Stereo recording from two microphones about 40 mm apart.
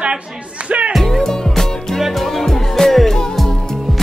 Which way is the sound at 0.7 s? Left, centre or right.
Right.